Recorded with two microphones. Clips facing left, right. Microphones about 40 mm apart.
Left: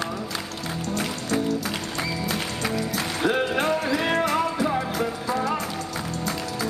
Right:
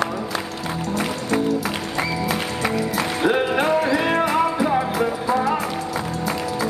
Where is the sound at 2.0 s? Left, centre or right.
Centre.